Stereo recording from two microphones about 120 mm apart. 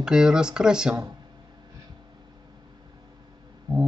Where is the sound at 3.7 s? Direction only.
40° right (ahead or behind).